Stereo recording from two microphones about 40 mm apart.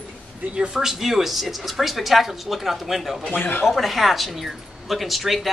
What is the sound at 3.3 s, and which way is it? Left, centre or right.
Speech, left.